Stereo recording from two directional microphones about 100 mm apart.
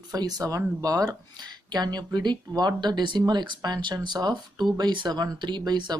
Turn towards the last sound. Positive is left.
turn(degrees=-45)  # may be behind; listen again after turning